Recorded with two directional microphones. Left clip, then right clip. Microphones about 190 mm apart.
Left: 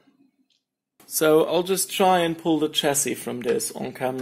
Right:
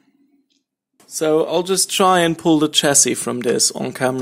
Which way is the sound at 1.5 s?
20° right (ahead or behind).